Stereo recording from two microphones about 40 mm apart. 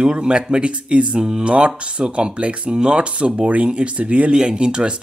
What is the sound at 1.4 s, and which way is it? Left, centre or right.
Speech, right.